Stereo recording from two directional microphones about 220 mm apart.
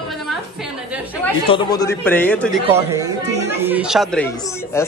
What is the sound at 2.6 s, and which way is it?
A man's voice, 10° right (ahead or behind).